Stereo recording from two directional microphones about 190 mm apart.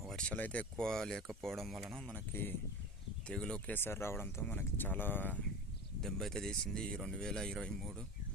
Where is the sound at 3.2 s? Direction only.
5° left (ahead or behind).